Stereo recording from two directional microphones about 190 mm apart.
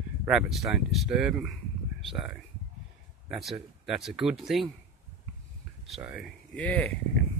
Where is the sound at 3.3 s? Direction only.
Centre (ahead or behind).